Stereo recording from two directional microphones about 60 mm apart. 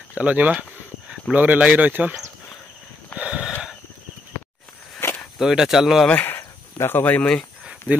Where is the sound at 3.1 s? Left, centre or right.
Right.